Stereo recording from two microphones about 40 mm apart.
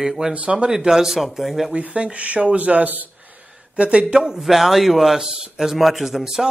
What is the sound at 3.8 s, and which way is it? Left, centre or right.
Speech, right.